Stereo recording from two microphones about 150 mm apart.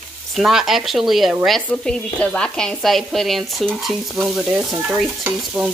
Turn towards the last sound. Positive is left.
turn(degrees=-10)  # may be behind; listen again after turning